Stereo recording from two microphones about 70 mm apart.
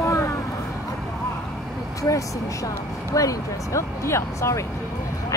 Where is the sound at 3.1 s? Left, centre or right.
Left.